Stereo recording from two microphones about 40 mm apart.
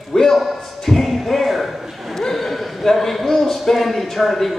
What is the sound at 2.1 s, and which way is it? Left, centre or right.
A man's voice, centre.